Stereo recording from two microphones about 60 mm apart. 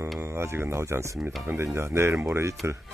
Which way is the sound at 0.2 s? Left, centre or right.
Right.